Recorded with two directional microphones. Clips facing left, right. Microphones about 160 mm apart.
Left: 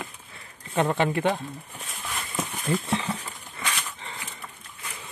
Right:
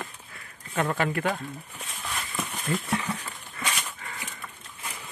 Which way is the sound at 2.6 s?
25° left (ahead or behind).